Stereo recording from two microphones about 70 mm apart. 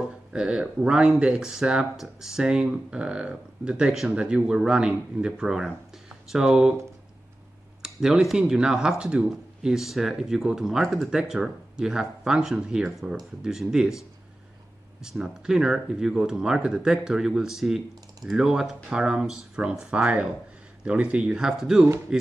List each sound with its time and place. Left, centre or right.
0.3 s speech: centre
7.8 s speech: centre